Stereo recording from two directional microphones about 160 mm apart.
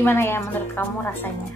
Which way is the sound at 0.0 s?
15° left (ahead or behind).